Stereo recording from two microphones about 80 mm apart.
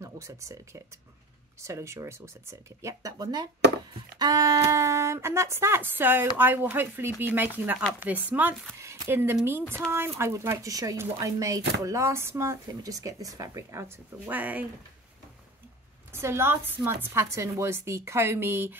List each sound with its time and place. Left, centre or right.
0.0 s speech: right
10.7 s speech: right
14.3 s speech: right
16.1 s speech: right